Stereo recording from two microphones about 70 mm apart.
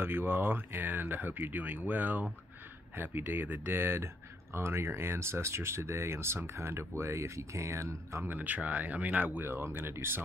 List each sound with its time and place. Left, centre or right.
0.0 s speech: right
8.2 s speech: right